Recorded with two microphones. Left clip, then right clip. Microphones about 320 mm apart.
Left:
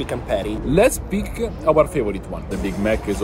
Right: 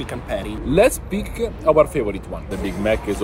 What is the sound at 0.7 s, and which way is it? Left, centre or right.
Speech, centre.